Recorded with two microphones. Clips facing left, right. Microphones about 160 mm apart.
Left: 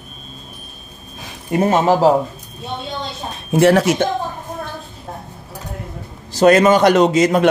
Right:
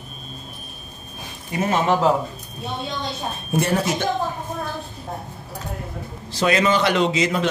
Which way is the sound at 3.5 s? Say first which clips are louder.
Left 9 dB; 90° left.